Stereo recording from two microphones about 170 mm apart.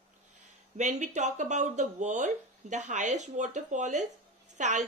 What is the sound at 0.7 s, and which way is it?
Speech, 45° right (ahead or behind).